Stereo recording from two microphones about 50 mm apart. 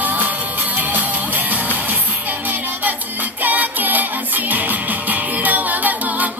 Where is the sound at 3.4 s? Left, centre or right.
Right.